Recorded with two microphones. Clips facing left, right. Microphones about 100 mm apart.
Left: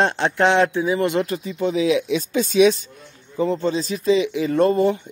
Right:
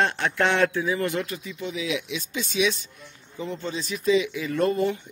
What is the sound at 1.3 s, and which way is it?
A man's voice, 35° left (ahead or behind).